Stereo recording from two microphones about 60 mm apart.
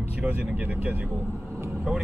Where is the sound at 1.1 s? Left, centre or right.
Right.